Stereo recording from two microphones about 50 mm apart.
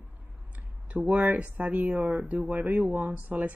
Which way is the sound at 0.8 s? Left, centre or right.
Right.